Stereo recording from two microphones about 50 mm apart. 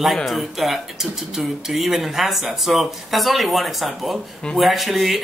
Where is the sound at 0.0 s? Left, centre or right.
Centre.